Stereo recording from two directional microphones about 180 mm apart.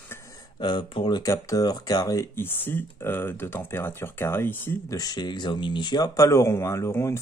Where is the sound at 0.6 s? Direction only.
25° left (ahead or behind).